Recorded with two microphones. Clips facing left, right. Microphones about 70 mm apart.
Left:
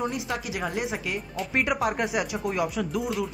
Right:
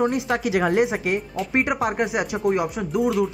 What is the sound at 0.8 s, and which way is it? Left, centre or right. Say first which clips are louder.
Speech: right 7 dB; right.